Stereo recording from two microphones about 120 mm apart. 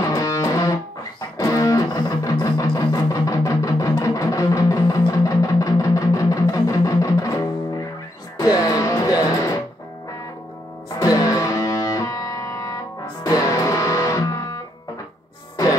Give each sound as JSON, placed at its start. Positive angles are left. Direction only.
{"t": 0.0, "sound": "music", "side_deg": 30}
{"t": 11.0, "sound": "music", "side_deg": 30}